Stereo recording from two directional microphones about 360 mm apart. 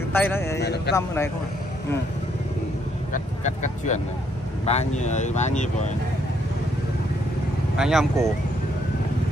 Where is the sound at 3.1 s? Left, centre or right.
Centre.